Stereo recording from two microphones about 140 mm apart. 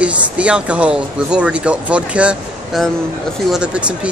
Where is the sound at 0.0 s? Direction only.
10° right (ahead or behind).